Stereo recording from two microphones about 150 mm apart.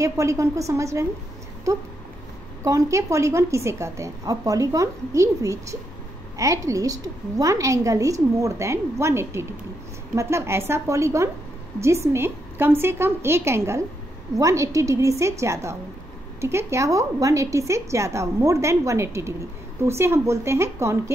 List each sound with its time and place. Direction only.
0.0 s a woman's voice: 20° right (ahead or behind)
2.6 s a woman's voice: 20° right (ahead or behind)